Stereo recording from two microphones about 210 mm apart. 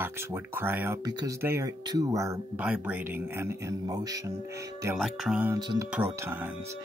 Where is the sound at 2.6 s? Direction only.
5° right (ahead or behind).